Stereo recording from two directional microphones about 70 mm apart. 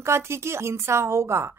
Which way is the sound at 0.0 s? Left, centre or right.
Right.